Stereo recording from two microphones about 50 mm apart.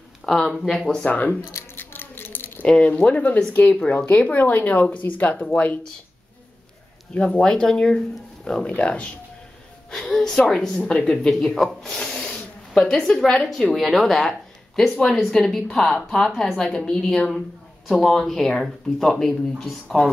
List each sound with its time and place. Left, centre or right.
0.2 s speech: centre
1.0 s speech: left
1.8 s a sound: left
2.8 s speech: left
7.2 s speech: centre
9.8 s a sound: centre
10.8 s speech: left
11.2 s a man's voice: centre
12.0 s snake: left
12.7 s speech: centre
17.8 s speech: centre